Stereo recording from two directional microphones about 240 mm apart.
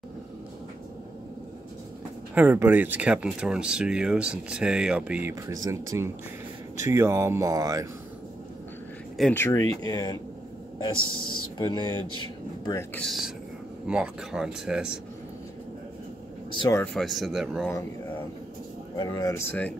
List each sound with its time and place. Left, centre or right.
2.3 s speech: centre
9.2 s speech: centre
12.9 s speech: centre
16.5 s speech: centre
17.6 s speech: centre